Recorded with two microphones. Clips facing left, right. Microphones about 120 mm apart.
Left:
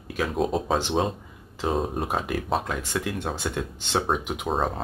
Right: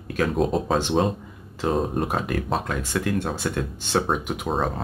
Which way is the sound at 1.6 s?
Centre (ahead or behind).